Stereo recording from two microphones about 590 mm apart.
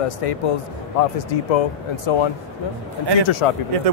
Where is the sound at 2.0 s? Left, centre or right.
Left.